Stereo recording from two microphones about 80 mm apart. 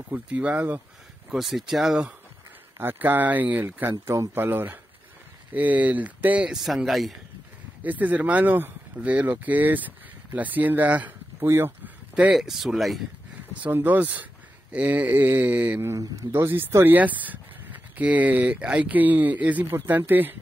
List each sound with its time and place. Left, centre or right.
0.1 s speech: centre
1.3 s speech: centre
2.8 s speech: right
6.5 s speech: centre
7.8 s speech: right
11.4 s speech: right
12.4 s speech: centre
13.7 s speech: right
15.8 s speech: right
16.8 s speech: right